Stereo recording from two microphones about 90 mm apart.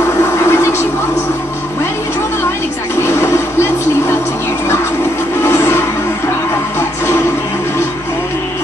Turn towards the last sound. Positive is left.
turn(degrees=30)  # may be behind; listen again after turning